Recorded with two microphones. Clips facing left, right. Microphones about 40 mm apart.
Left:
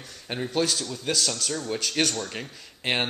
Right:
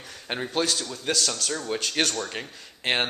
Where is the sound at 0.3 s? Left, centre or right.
Right.